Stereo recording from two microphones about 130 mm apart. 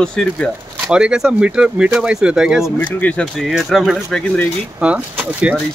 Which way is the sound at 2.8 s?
10° left (ahead or behind).